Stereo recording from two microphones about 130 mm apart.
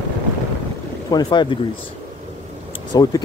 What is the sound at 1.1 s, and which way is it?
Speech, 35° left (ahead or behind).